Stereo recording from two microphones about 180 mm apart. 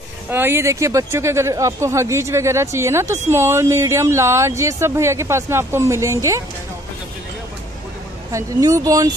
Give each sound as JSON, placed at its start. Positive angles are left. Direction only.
{"t": 0.3, "sound": "speech", "side_deg": -10}
{"t": 8.3, "sound": "speech", "side_deg": -20}